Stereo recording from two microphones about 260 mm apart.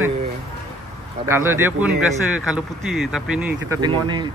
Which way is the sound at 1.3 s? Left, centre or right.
Centre.